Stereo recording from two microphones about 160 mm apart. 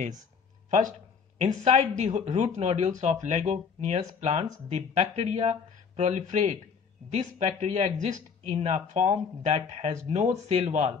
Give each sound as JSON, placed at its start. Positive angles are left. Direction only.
{"t": 0.7, "sound": "speech", "side_deg": -50}